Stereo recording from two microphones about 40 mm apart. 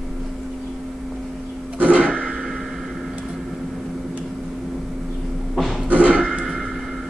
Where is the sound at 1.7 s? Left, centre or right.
Right.